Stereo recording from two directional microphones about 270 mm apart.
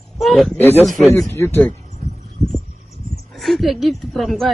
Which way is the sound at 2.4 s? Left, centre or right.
Centre.